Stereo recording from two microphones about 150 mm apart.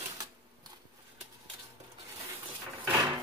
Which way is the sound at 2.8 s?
20° right (ahead or behind).